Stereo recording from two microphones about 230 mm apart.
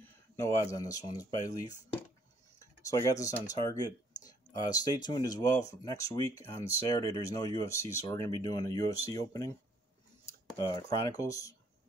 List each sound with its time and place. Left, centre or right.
0.4 s speech: centre
10.6 s speech: centre